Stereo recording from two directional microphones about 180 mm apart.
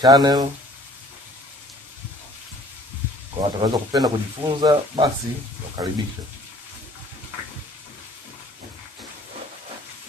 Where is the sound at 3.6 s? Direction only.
20° right (ahead or behind).